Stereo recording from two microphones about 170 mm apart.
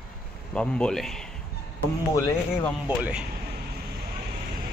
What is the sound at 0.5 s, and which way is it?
Speech, 5° left (ahead or behind).